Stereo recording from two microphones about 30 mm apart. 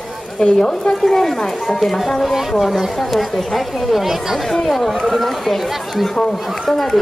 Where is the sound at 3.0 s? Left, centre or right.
Centre.